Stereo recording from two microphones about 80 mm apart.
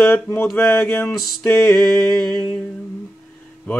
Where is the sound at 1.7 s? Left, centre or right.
Centre.